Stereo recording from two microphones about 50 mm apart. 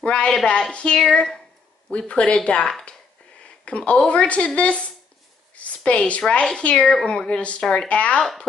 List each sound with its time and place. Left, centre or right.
0.0 s speech: left